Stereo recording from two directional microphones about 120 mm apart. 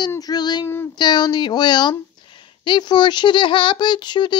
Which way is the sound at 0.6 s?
20° left (ahead or behind).